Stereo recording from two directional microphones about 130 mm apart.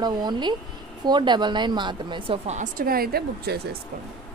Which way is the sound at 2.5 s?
75° right (ahead or behind).